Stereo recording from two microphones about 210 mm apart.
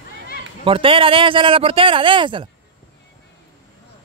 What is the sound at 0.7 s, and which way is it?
Speech, 25° right (ahead or behind).